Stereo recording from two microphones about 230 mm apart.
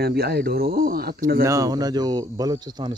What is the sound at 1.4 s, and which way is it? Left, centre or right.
Speech, centre.